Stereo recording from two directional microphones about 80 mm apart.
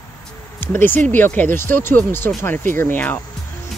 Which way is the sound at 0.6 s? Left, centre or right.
Left.